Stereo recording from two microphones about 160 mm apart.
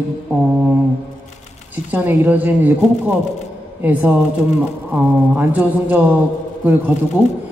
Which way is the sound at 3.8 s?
10° right (ahead or behind).